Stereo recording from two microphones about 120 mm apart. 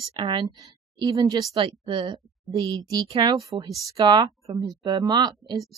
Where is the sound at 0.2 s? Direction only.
45° right (ahead or behind).